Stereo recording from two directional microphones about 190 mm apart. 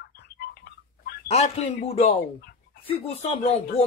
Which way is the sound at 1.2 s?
35° left (ahead or behind).